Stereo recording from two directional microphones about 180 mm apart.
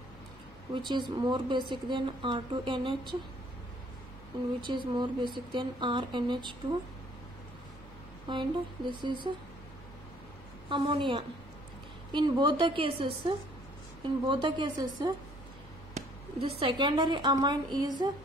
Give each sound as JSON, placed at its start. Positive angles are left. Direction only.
{"t": 0.7, "sound": "a woman's voice", "side_deg": -25}
{"t": 4.6, "sound": "a woman's voice", "side_deg": -25}
{"t": 8.3, "sound": "a woman's voice", "side_deg": -25}
{"t": 10.7, "sound": "a woman's voice", "side_deg": -25}